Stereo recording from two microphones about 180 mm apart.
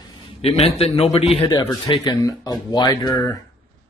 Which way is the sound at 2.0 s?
15° left (ahead or behind).